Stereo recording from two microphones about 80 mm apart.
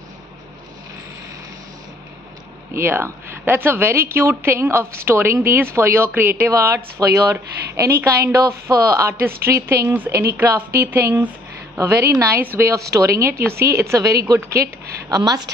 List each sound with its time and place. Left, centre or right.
2.7 s a woman's voice: right